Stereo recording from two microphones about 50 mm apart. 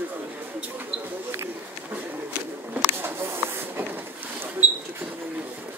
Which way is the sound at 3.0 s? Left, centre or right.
Right.